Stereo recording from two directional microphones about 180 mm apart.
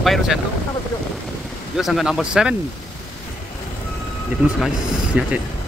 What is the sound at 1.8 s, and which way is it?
Speech, centre (ahead or behind).